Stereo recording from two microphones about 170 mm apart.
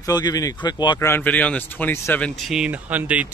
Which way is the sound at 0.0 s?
20° left (ahead or behind).